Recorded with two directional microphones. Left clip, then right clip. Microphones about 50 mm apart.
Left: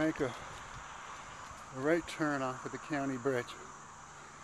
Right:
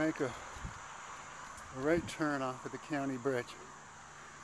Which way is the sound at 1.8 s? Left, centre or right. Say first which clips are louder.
Left 1 dB; centre.